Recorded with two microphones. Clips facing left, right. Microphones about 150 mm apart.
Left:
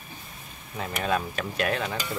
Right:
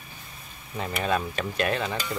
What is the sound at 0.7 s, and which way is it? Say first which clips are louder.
Speech: right 1 dB; centre (ahead or behind).